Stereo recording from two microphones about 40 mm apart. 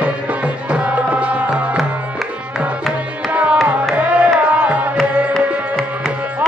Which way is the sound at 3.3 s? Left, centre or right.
Right.